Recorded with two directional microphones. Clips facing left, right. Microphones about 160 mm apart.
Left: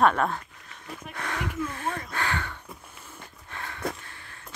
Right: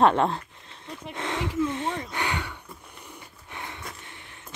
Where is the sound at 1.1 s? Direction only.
25° right (ahead or behind).